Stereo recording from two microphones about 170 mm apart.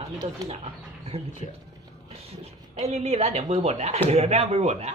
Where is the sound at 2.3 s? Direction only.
35° right (ahead or behind).